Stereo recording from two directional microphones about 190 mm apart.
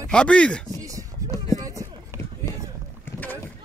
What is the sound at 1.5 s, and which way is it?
Run, 20° right (ahead or behind).